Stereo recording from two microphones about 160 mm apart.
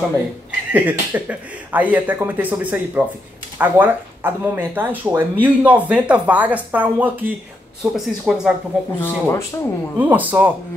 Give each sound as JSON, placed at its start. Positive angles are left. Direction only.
{"t": 0.7, "sound": "speech", "side_deg": -10}
{"t": 9.0, "sound": "speech", "side_deg": 15}
{"t": 9.9, "sound": "speech", "side_deg": -10}